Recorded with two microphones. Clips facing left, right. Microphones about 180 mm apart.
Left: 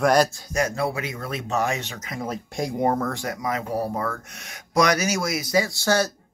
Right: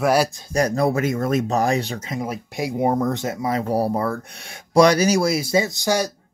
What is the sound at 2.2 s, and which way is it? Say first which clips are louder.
Speech: even; 10° right (ahead or behind).